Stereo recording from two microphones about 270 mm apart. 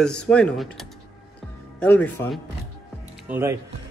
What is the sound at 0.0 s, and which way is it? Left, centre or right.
Speech, centre.